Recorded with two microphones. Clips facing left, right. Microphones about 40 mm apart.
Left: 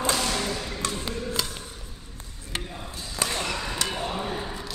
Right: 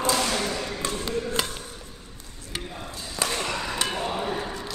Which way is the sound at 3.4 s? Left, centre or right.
Centre.